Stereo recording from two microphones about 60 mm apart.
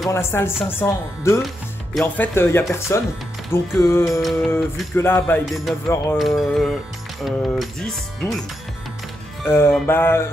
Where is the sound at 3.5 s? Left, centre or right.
Left.